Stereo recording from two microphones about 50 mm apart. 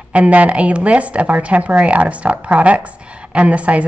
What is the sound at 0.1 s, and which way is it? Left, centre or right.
Speech, right.